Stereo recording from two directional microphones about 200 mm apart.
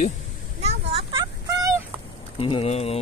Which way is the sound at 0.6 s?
25° right (ahead or behind).